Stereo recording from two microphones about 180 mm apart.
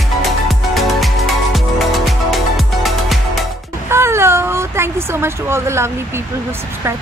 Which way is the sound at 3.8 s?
15° right (ahead or behind).